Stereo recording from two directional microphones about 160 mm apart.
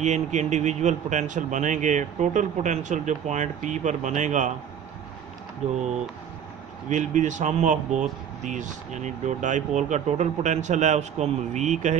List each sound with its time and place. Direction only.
0.0 s speech: 45° right (ahead or behind)
6.9 s speech: 50° right (ahead or behind)